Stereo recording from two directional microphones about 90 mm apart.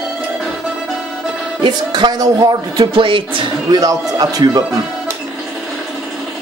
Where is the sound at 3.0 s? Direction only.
75° right (ahead or behind).